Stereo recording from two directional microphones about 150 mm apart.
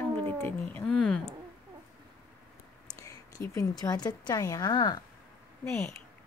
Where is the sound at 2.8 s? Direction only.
20° left (ahead or behind).